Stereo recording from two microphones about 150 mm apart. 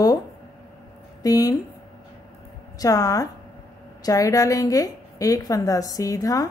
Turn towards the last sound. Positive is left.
turn(degrees=25)  # may be behind; listen again after turning